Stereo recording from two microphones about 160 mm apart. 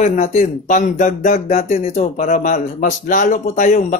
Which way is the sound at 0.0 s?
50° left (ahead or behind).